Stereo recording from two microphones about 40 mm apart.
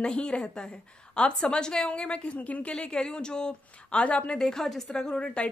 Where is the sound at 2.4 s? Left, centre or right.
Left.